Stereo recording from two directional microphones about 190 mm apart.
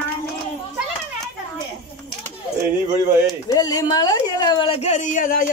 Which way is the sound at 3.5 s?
20° left (ahead or behind).